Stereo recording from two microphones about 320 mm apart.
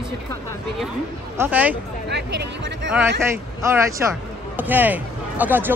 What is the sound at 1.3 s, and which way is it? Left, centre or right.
Speech, centre.